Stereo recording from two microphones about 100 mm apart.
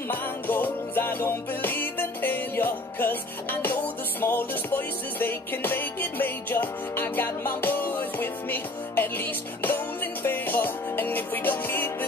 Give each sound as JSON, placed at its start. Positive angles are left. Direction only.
{"t": 0.1, "sound": "music", "side_deg": 20}